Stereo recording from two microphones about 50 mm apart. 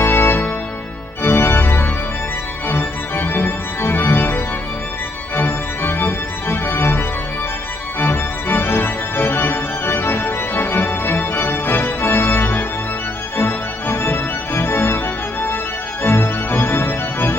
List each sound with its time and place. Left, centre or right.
0.0 s music: left
1.2 s organ: left
16.0 s organ: left